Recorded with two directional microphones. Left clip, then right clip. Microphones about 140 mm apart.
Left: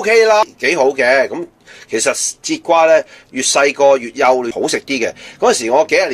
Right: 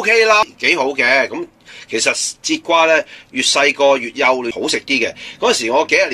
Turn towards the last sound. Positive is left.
turn(degrees=40)  # may be behind; listen again after turning